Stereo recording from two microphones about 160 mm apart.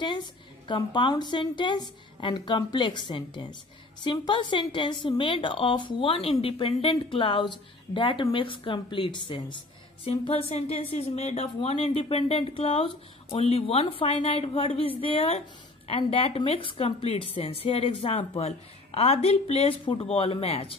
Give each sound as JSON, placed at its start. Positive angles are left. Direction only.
{"t": 0.7, "sound": "a woman's voice", "side_deg": 30}